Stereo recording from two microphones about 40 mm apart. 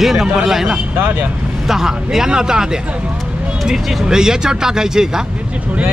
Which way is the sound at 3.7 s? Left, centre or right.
Centre.